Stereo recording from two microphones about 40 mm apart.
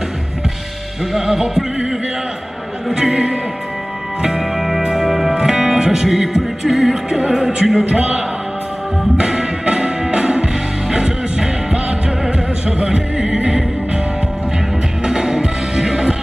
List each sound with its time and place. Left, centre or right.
1.1 s music: centre
2.9 s a man's voice: centre
4.4 s music: centre
9.1 s music: right
15.0 s music: centre